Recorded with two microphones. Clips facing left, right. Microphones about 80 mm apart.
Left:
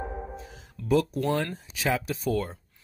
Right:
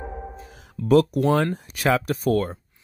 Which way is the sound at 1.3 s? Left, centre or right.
Right.